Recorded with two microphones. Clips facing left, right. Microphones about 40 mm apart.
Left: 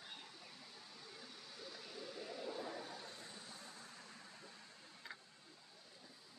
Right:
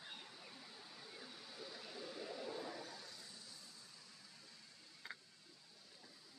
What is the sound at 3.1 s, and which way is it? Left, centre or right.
Vehicle, left.